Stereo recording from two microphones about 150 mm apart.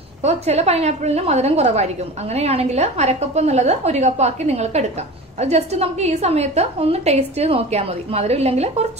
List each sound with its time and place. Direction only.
0.2 s a woman's voice: 45° right (ahead or behind)